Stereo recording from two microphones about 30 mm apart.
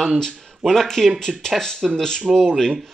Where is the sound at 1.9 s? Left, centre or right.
Centre.